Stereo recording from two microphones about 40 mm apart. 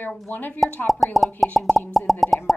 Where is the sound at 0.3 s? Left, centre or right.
Left.